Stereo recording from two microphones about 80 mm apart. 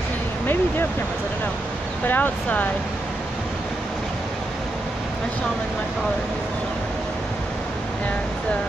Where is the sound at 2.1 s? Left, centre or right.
Left.